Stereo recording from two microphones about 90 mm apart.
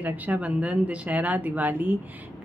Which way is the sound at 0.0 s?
15° right (ahead or behind).